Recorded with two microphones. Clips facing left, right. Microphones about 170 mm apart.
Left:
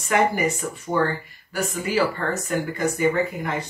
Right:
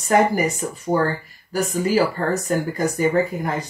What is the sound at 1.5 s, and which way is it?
Speech, 35° right (ahead or behind).